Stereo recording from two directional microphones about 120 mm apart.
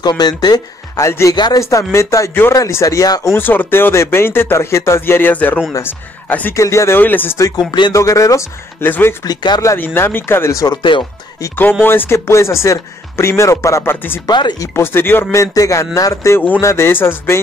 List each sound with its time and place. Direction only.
0.0 s speech: 35° left (ahead or behind)
1.3 s speech: 35° left (ahead or behind)
1.6 s speech: 25° left (ahead or behind)
3.3 s speech: 15° left (ahead or behind)
7.3 s speech: 30° left (ahead or behind)
9.2 s speech: 35° left (ahead or behind)
9.8 s speech: 15° left (ahead or behind)
10.8 s speech: 45° left (ahead or behind)
11.4 s speech: 15° left (ahead or behind)
14.2 s speech: 35° left (ahead or behind)
14.8 s speech: 20° left (ahead or behind)